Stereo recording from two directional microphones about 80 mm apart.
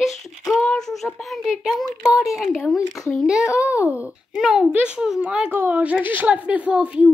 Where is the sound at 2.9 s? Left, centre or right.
Centre.